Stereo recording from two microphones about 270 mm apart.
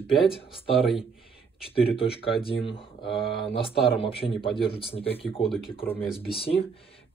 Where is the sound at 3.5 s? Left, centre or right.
Centre.